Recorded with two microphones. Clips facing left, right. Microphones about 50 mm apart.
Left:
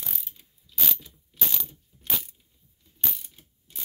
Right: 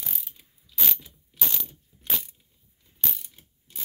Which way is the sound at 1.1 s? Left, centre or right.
Centre.